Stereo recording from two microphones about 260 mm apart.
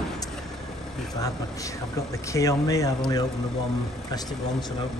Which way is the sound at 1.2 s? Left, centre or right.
Centre.